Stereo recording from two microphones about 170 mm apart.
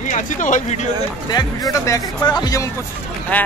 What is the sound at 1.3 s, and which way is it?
Speech, 25° left (ahead or behind).